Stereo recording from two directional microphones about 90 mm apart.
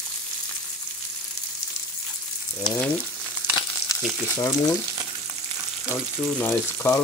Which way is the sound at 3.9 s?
35° left (ahead or behind).